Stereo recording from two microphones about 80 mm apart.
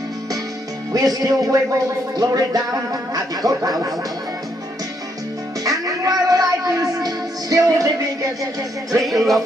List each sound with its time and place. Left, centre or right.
0.9 s music: right
5.6 s music: right
9.0 s speech: centre